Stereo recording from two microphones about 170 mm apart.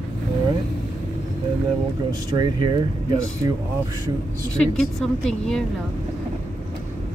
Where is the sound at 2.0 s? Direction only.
25° right (ahead or behind).